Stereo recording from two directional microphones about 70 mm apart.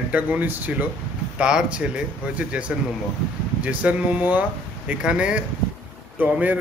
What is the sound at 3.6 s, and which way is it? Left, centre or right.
Speech, centre.